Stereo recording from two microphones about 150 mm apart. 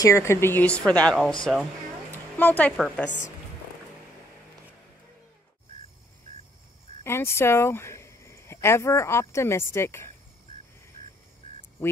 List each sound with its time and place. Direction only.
0.0 s speech: 20° left (ahead or behind)
1.5 s speech: 5° right (ahead or behind)
2.3 s speech: 10° left (ahead or behind)
7.0 s speech: 15° left (ahead or behind)